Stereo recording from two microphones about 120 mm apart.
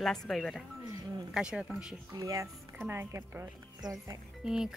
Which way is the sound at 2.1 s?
30° right (ahead or behind).